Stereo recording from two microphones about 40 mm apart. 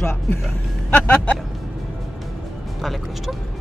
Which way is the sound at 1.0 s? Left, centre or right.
Left.